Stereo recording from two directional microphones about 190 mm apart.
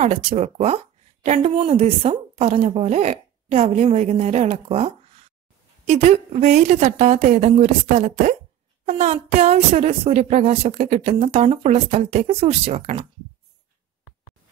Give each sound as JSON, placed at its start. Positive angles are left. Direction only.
{"t": 0.0, "sound": "speech", "side_deg": -35}